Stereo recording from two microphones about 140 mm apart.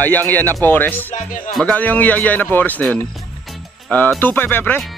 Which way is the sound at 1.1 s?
70° left (ahead or behind).